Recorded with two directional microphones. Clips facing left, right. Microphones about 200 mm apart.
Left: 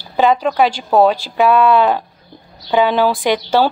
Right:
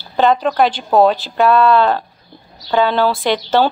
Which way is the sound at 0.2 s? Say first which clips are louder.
Even; 5° left (ahead or behind).